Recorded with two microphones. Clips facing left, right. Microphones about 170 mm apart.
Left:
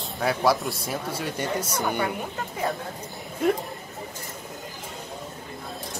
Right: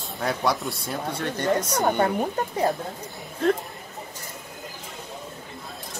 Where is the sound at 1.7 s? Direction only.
45° right (ahead or behind).